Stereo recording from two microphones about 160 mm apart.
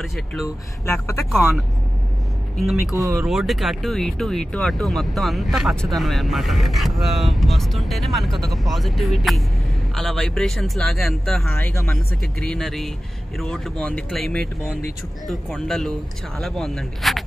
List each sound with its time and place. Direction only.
0.0 s speech: centre (ahead or behind)
0.8 s speech: 15° left (ahead or behind)
1.3 s speech: centre (ahead or behind)
3.0 s speech: 20° right (ahead or behind)
3.3 s speech: centre (ahead or behind)